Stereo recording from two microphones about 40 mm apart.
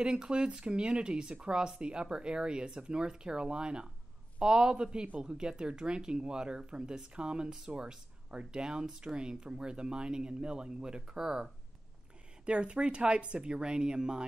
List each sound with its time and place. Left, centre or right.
0.0 s speech: right
12.4 s speech: right